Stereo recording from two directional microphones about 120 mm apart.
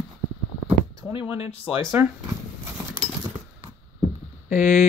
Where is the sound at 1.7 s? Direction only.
20° right (ahead or behind).